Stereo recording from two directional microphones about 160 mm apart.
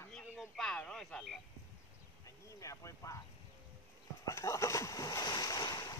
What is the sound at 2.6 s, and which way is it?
Speech, 20° left (ahead or behind).